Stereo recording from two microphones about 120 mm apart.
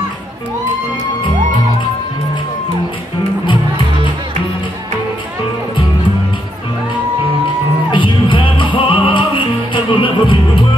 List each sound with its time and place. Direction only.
7.9 s music: 45° left (ahead or behind)